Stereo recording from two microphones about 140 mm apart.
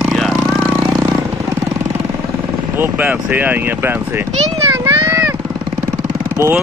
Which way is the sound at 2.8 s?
15° right (ahead or behind).